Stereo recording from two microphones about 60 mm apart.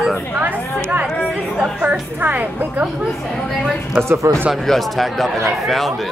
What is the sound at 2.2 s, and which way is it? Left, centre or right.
Speech, right.